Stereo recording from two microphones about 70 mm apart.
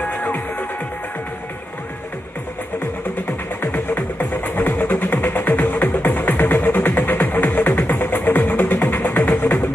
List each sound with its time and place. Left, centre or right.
0.1 s music: left
3.7 s music: left